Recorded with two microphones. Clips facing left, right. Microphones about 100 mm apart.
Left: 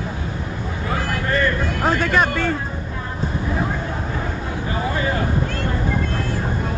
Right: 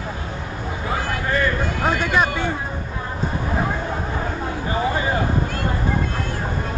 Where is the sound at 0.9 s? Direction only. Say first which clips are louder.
Left 1 dB; 5° right (ahead or behind).